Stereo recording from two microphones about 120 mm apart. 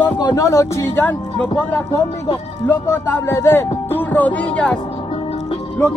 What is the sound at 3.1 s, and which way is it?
Speech, 20° left (ahead or behind).